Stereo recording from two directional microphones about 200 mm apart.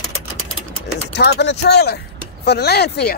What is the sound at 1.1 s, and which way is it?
Speech, 55° left (ahead or behind).